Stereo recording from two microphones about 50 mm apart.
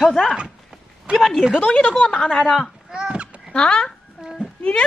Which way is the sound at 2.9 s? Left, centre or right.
Centre.